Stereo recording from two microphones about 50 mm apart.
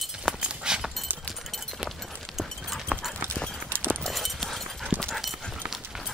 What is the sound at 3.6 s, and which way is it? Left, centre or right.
Clip-clop, right.